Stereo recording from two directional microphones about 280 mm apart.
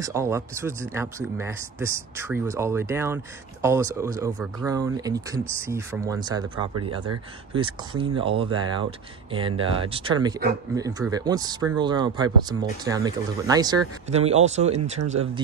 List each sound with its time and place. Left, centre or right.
0.0 s speech: centre